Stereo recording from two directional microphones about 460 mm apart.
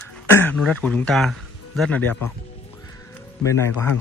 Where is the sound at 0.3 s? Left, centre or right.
Centre.